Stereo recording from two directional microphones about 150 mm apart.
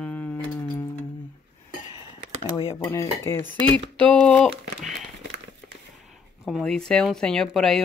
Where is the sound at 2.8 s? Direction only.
20° left (ahead or behind); by 5.0 s centre (ahead or behind).